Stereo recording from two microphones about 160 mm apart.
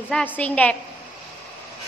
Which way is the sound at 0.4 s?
10° left (ahead or behind).